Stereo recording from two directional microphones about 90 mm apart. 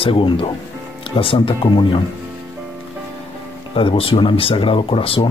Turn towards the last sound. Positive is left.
turn(degrees=85)